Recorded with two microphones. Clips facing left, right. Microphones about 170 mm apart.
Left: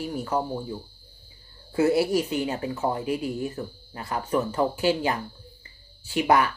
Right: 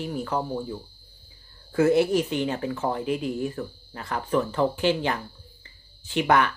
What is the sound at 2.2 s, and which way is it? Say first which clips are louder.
Speech: right 1 dB; 5° left (ahead or behind).